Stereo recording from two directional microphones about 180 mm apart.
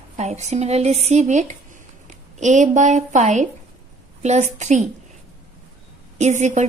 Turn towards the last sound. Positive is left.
turn(degrees=-40)  # may be behind; listen again after turning